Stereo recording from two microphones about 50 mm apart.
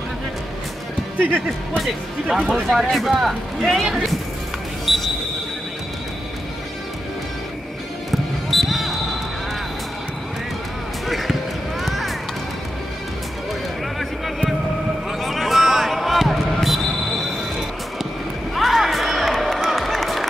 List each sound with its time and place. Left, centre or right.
1.1 s speech: right
2.2 s speech: centre
4.9 s a sound: centre
8.1 s basketball bounce: centre
11.1 s basketball bounce: centre
11.8 s music: centre
15.0 s basketball bounce: centre
18.5 s crowd: centre